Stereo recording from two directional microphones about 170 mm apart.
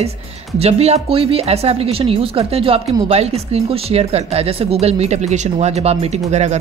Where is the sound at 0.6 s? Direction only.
35° right (ahead or behind).